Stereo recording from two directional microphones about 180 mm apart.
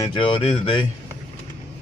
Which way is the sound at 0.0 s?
30° left (ahead or behind).